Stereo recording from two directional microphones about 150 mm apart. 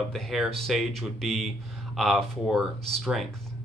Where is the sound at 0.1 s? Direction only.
Centre (ahead or behind).